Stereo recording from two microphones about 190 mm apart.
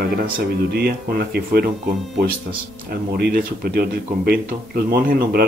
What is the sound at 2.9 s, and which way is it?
Speech, 50° right (ahead or behind).